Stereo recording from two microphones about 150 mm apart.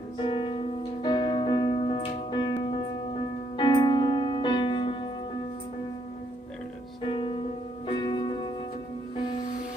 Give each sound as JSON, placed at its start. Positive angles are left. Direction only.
{"t": 0.2, "sound": "music", "side_deg": 35}
{"t": 7.1, "sound": "music", "side_deg": 35}